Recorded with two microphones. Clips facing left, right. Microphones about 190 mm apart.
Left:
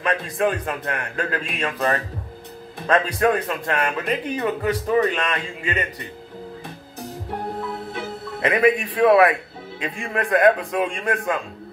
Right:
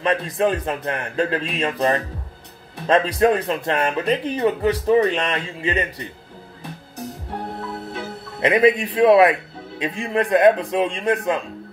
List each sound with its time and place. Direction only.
0.0 s a man's voice: 25° right (ahead or behind)
2.9 s a man's voice: 25° right (ahead or behind)
8.4 s a man's voice: 20° right (ahead or behind)